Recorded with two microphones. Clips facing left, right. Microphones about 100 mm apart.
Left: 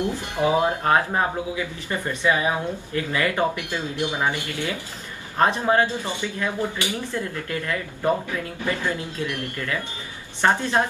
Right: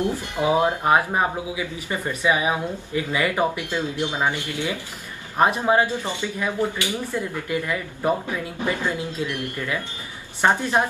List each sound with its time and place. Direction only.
0.4 s speech: 20° right (ahead or behind)